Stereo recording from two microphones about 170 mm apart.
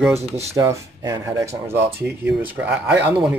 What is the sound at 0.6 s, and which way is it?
Speech, 15° right (ahead or behind).